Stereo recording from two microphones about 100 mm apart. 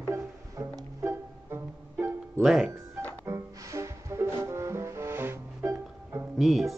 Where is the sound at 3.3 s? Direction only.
30° right (ahead or behind).